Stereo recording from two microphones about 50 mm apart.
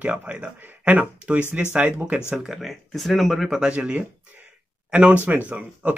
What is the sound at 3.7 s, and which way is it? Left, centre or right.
Speech, right.